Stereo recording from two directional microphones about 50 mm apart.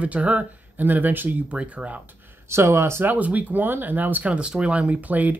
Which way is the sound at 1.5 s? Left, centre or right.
Right.